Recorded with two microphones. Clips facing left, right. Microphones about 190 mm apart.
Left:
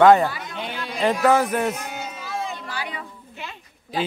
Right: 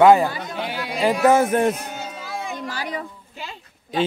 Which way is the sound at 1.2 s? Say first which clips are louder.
Right 4 dB; 20° right (ahead or behind).